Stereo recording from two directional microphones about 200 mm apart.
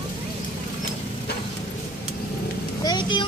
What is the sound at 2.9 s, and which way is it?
Vehicle, 25° left (ahead or behind).